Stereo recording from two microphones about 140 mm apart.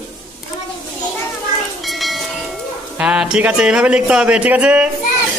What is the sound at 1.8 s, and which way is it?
Train, centre (ahead or behind).